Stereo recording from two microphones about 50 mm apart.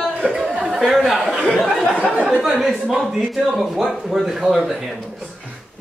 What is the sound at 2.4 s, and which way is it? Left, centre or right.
Speech, centre.